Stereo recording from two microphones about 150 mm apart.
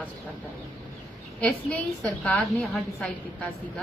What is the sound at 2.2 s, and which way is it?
A woman's voice, centre (ahead or behind).